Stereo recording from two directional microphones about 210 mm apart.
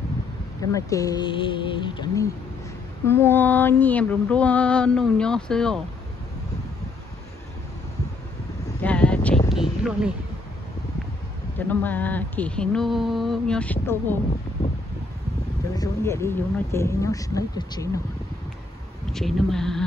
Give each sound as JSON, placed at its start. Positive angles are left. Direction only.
{"t": 0.6, "sound": "speech", "side_deg": 15}
{"t": 3.1, "sound": "mantra", "side_deg": 10}
{"t": 8.8, "sound": "a sound", "side_deg": 5}
{"t": 11.5, "sound": "mantra", "side_deg": 10}
{"t": 15.7, "sound": "speech", "side_deg": 15}
{"t": 19.1, "sound": "mantra", "side_deg": 0}